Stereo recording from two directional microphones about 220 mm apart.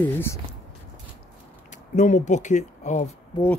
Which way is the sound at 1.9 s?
35° left (ahead or behind).